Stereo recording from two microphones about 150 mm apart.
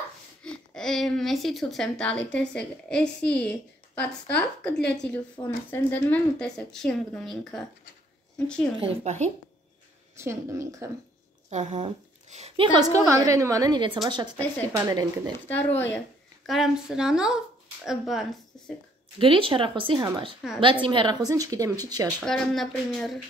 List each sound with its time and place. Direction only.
0.4 s a woman's voice: 5° left (ahead or behind)
8.7 s speech: 35° right (ahead or behind)
10.1 s speech: 20° right (ahead or behind)
11.5 s a woman's voice: 50° right (ahead or behind)
12.7 s speech: 25° right (ahead or behind)
15.4 s a woman's voice: 10° left (ahead or behind)
16.4 s speech: centre (ahead or behind)
19.1 s speech: 35° right (ahead or behind)
22.2 s speech: 5° left (ahead or behind)